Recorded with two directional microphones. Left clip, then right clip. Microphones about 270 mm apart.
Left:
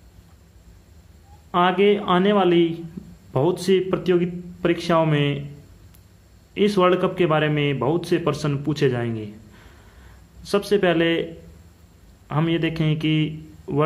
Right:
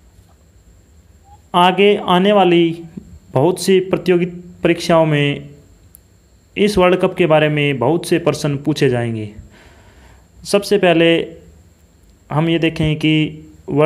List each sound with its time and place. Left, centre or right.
1.5 s a man's voice: right
6.5 s a man's voice: centre
12.3 s a man's voice: centre